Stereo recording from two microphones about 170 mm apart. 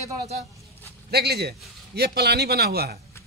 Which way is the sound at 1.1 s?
70° right (ahead or behind).